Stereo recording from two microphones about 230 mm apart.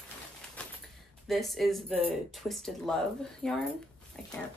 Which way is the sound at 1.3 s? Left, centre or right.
Centre.